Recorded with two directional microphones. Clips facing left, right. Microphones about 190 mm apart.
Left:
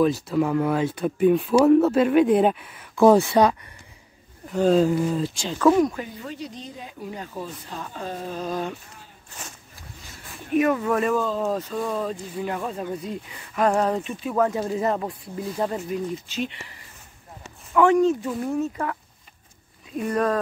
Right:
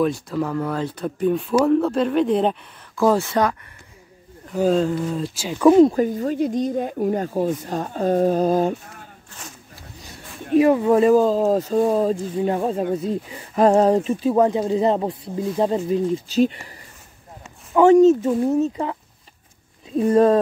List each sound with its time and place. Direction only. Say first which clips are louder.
0.0 s speech: left 1 dB; 5° left (ahead or behind)
3.0 s speech: left 3 dB; 15° left (ahead or behind)
4.6 s speech: even; centre (ahead or behind)
5.9 s speech: right 13 dB; 45° right (ahead or behind)
10.5 s speech: right 6 dB; 25° right (ahead or behind)
17.8 s speech: right 6 dB; 30° right (ahead or behind)